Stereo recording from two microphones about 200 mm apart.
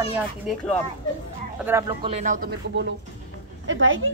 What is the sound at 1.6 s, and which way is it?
Speech, 10° right (ahead or behind).